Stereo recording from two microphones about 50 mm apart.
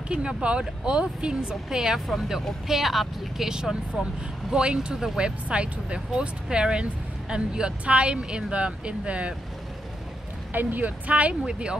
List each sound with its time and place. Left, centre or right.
0.1 s speech: centre
2.7 s speech: centre; by 9.3 s right
10.5 s speech: right